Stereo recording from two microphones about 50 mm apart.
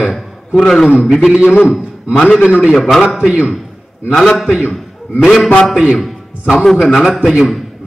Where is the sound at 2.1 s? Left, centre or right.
Left.